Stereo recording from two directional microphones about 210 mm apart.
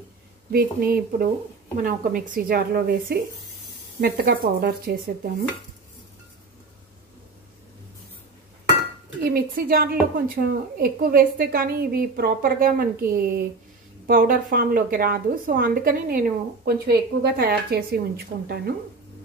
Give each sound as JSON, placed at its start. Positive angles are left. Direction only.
{"t": 0.5, "sound": "a woman's voice", "side_deg": -45}
{"t": 9.2, "sound": "a woman's voice", "side_deg": -45}